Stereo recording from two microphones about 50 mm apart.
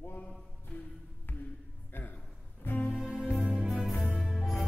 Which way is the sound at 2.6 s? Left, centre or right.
Left.